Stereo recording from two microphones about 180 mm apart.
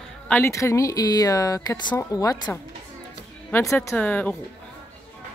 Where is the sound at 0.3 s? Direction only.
15° left (ahead or behind).